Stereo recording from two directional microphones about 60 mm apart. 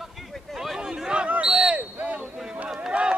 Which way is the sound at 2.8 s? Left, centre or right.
Centre.